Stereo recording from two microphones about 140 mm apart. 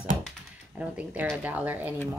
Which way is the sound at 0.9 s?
10° right (ahead or behind).